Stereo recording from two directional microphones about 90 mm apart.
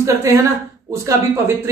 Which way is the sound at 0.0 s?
35° right (ahead or behind).